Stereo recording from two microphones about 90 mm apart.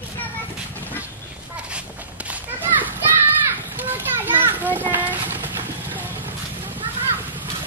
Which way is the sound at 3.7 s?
20° right (ahead or behind).